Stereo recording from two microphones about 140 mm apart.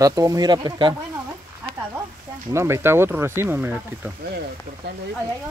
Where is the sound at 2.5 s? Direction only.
20° right (ahead or behind).